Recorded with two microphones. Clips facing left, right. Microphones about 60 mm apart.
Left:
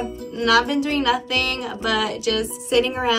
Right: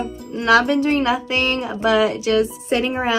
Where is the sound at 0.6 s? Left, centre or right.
Right.